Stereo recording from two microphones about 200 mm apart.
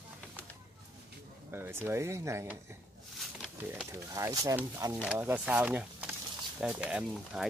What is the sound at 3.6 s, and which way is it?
Speech, 10° right (ahead or behind).